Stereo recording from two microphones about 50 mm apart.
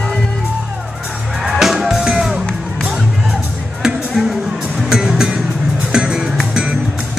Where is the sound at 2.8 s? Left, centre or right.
Centre.